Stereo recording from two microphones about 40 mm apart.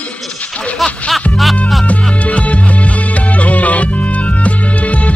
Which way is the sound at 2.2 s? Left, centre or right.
Left.